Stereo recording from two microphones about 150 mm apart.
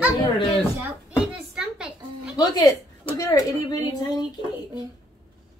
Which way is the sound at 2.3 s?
25° left (ahead or behind).